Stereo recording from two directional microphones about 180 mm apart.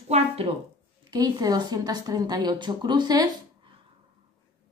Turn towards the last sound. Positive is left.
turn(degrees=-25)  # may be behind; listen again after turning